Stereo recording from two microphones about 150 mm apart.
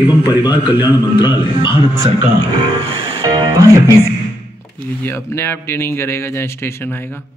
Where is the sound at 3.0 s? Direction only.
35° right (ahead or behind).